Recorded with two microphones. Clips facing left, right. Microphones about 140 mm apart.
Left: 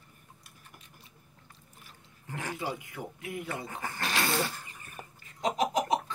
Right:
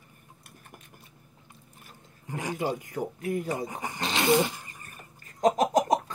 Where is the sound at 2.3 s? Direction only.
15° right (ahead or behind).